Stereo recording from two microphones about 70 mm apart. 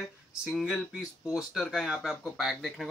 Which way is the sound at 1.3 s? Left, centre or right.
Centre.